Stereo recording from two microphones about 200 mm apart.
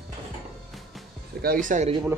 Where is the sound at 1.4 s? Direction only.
45° right (ahead or behind).